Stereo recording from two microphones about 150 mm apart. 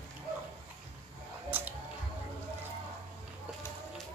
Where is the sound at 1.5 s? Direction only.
10° right (ahead or behind).